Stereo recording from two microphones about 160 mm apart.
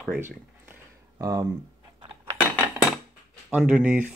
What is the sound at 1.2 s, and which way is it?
Speech, 25° right (ahead or behind).